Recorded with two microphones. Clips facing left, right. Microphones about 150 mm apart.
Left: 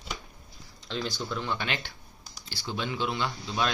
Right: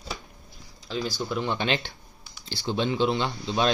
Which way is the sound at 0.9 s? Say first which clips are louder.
Right 3 dB; 5° right (ahead or behind).